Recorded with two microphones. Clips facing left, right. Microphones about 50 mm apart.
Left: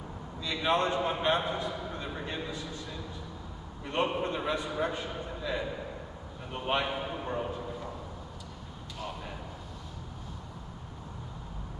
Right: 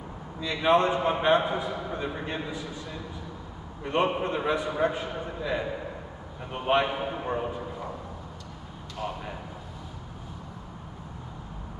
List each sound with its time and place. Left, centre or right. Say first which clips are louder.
0.4 s a man's voice: right 6 dB; centre
8.9 s a man's voice: right 5 dB; centre